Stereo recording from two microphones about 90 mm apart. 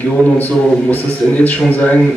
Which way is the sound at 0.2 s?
15° left (ahead or behind).